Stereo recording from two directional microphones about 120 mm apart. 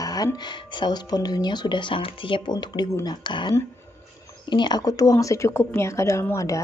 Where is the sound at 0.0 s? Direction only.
35° left (ahead or behind).